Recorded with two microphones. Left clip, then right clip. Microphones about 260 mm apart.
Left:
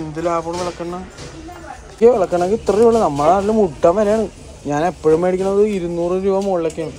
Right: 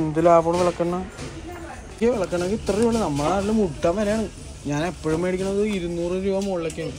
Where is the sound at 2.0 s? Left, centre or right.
Left.